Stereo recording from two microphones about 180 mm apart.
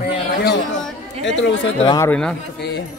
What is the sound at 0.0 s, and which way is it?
Chatter, 65° left (ahead or behind).